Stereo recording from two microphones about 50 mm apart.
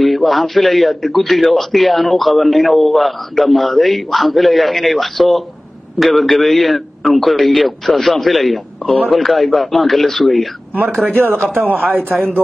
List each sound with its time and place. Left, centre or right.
0.0 s a man's voice: centre
11.1 s speech: right